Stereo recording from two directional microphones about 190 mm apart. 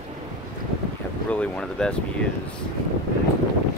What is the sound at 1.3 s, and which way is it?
Speech, 5° left (ahead or behind).